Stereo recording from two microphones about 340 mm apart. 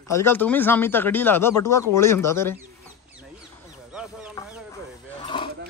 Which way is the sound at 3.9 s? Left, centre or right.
Centre.